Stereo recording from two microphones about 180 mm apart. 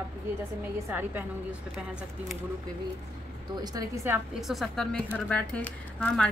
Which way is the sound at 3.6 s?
20° right (ahead or behind).